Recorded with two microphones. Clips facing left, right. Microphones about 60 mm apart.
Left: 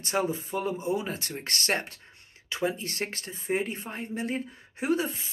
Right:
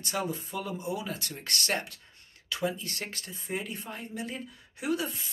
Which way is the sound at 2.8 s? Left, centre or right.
Left.